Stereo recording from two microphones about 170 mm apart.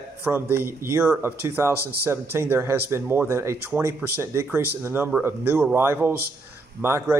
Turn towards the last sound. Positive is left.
turn(degrees=-15)  # may be behind; listen again after turning